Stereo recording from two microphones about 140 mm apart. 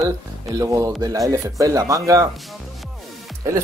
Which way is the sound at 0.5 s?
25° right (ahead or behind).